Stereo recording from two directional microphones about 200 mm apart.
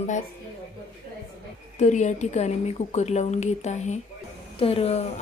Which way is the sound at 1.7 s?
35° left (ahead or behind).